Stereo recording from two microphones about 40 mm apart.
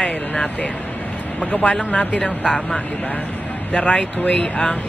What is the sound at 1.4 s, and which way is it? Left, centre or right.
Speech, left.